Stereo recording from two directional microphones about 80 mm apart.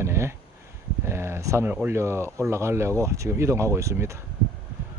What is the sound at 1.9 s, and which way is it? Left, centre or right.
Speech, right.